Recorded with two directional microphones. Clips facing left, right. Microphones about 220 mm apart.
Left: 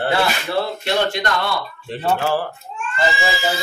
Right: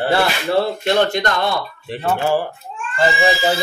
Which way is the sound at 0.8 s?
45° right (ahead or behind).